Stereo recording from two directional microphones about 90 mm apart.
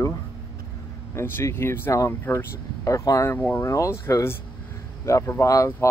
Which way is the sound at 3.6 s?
35° left (ahead or behind).